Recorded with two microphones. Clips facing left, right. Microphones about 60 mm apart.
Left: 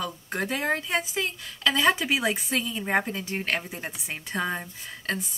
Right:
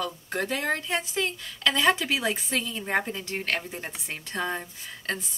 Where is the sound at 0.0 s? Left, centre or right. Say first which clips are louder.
Even; centre.